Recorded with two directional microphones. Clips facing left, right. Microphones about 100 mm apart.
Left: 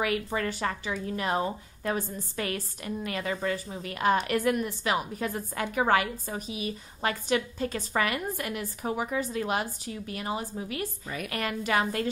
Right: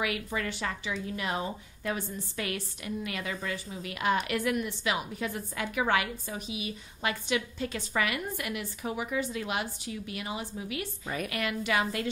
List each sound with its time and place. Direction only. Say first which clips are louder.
0.0 s a woman's voice: left 4 dB; 40° left (ahead or behind)